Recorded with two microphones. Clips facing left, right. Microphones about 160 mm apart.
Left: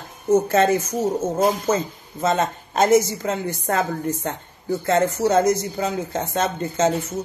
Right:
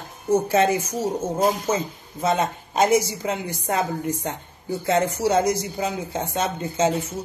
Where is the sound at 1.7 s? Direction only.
10° right (ahead or behind).